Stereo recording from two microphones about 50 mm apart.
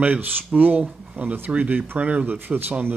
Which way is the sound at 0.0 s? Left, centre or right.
Right.